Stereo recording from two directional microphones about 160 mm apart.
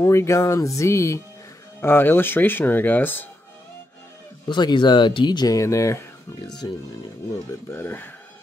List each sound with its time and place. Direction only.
0.0 s speech: 20° left (ahead or behind)
4.5 s speech: 30° left (ahead or behind)
7.7 s speech: 15° left (ahead or behind)